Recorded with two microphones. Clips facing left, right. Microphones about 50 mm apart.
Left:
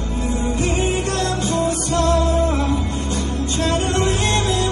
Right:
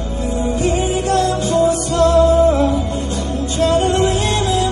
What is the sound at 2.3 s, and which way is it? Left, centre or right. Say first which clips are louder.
Music: right 6 dB; right.